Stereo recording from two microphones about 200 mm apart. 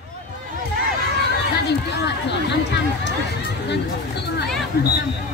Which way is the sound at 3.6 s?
55° left (ahead or behind).